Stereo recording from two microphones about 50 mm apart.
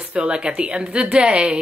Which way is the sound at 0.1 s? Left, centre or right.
Right.